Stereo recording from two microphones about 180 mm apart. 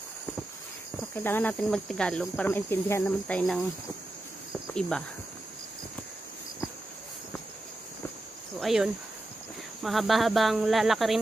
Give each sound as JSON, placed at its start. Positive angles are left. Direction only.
{"t": 1.1, "sound": "cricket", "side_deg": 10}
{"t": 4.7, "sound": "speech", "side_deg": 5}
{"t": 8.5, "sound": "speech", "side_deg": 0}